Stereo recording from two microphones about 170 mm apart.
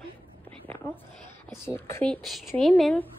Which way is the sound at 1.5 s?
15° left (ahead or behind).